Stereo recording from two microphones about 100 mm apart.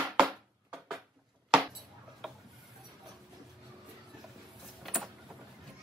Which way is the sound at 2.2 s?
Centre (ahead or behind).